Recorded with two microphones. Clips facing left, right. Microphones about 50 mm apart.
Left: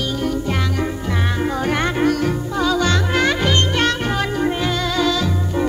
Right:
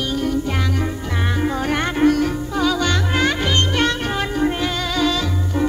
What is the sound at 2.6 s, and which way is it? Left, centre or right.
Music, centre.